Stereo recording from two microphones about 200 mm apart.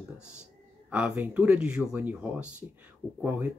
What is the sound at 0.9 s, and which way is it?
Speech, 5° right (ahead or behind).